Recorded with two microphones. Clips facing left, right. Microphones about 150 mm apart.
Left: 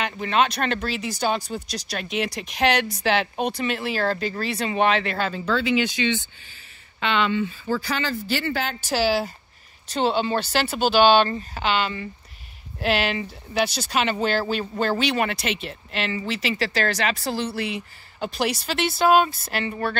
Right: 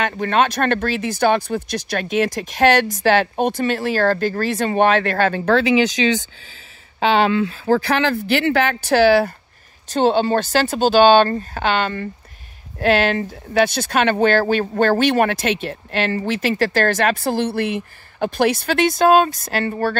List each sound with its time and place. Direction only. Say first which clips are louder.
0.0 s speech: right 4 dB; 50° right (ahead or behind)
5.3 s speech: right 5 dB; 70° right (ahead or behind); by 6.2 s 90° right
7.2 s speech: right 7 dB; 90° right; by 9.3 s 60° right (ahead or behind)
9.8 s speech: right 6 dB; 45° right (ahead or behind)